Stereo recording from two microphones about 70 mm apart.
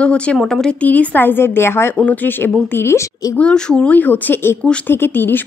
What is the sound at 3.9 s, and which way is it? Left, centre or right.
A woman's voice, left.